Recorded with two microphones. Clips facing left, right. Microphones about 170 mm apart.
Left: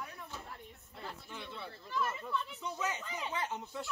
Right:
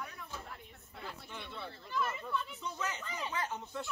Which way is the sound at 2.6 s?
20° left (ahead or behind).